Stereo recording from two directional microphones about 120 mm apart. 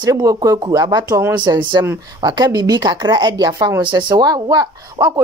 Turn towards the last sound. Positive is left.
turn(degrees=-30)  # may be behind; listen again after turning